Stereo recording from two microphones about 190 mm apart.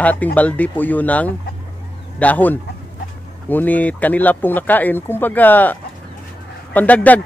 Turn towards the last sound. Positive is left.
turn(degrees=10)  # may be behind; listen again after turning